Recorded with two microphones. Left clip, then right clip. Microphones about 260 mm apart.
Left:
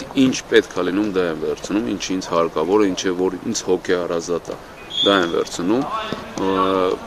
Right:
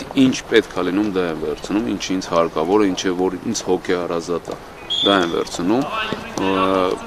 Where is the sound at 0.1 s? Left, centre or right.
Centre.